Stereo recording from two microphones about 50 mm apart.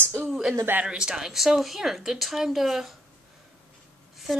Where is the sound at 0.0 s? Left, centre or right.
Right.